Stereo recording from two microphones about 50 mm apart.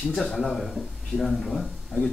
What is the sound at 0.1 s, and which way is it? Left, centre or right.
Speech, centre.